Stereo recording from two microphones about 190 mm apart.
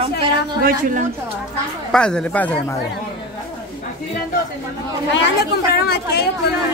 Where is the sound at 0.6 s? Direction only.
45° right (ahead or behind).